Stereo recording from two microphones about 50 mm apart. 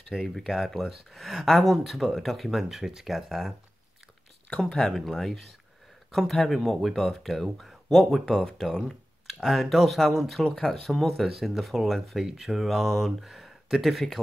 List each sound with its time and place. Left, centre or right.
0.1 s speech: centre
4.5 s speech: centre